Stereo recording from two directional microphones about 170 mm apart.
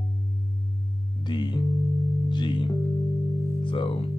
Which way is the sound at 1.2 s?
25° left (ahead or behind).